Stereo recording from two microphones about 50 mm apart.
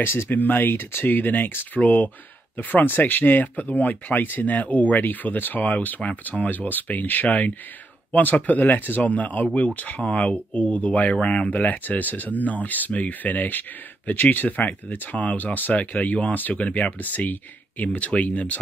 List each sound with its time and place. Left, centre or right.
0.0 s speech: left
1.8 s speech: left
2.5 s speech: left